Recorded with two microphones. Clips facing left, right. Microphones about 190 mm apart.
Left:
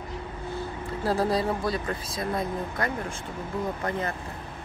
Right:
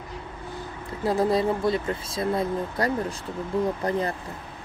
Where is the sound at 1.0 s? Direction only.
20° right (ahead or behind).